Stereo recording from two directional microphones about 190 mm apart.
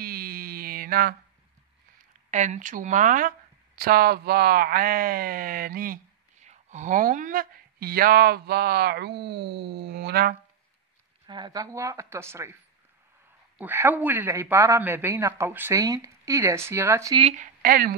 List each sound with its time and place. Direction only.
0.0 s mantra: 50° right (ahead or behind)
2.3 s speech: 40° right (ahead or behind); by 10.3 s 55° right (ahead or behind)
11.2 s a man's voice: 25° right (ahead or behind)
13.6 s a man's voice: 10° right (ahead or behind)
17.2 s speech: 35° right (ahead or behind)
17.6 s speech: 50° right (ahead or behind)